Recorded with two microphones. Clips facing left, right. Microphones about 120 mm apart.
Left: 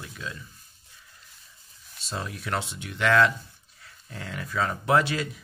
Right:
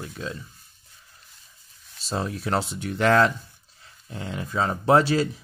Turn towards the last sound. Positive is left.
turn(degrees=-35)  # may be behind; listen again after turning